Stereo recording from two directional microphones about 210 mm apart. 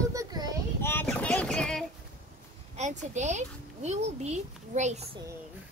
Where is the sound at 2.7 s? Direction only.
35° right (ahead or behind).